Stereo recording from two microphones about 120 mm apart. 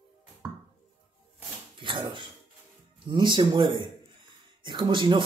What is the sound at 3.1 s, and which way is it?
Speech, 40° right (ahead or behind).